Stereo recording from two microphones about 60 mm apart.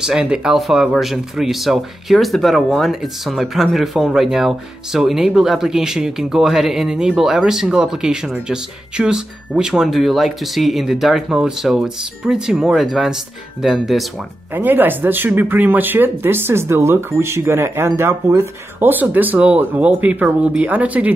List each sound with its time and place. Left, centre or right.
0.0 s speech: centre
14.5 s speech: right
18.9 s speech: right